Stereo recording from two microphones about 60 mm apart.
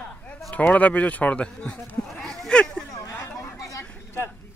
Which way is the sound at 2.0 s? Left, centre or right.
Centre.